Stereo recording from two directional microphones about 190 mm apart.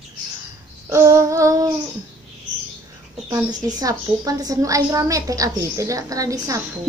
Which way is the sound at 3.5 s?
20° right (ahead or behind).